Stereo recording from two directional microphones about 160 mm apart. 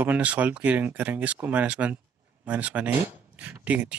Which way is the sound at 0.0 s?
10° right (ahead or behind).